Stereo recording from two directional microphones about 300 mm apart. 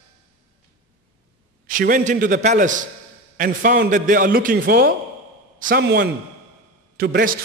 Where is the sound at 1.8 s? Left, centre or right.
Right.